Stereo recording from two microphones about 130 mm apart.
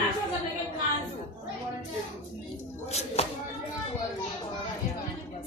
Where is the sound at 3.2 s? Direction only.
55° left (ahead or behind).